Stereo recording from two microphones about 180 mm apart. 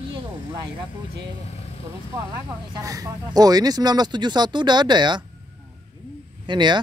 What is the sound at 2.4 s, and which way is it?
Speech, 20° right (ahead or behind).